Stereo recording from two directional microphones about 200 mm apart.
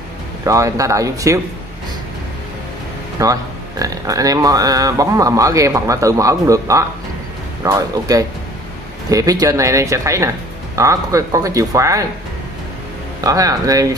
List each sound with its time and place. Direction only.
0.5 s speech: 15° right (ahead or behind)
3.2 s speech: 15° right (ahead or behind)
13.2 s speech: 20° right (ahead or behind)